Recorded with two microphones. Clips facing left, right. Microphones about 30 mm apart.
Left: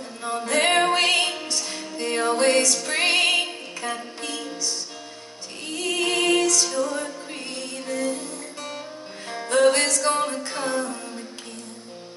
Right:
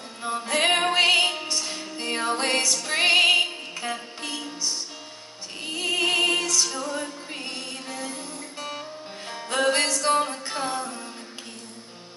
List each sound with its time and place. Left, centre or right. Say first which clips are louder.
0.2 s music: left 1 dB; centre
0.9 s music: right 1 dB; centre
1.7 s music: left 2 dB; centre
5.7 s music: right 1 dB; centre
8.1 s music: left 5 dB; centre
10.0 s a capella: even; centre
10.5 s music: left 3 dB; centre